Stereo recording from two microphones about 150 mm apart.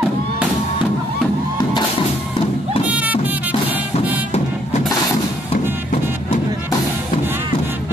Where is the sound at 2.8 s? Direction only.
10° right (ahead or behind).